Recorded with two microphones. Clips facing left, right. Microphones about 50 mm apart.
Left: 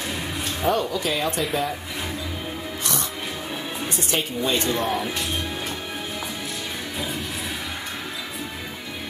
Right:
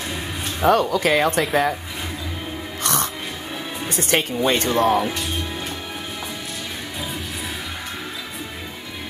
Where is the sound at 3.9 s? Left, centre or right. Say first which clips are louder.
Right 6 dB; right.